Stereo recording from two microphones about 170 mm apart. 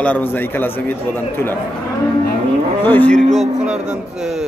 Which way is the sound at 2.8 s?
10° left (ahead or behind).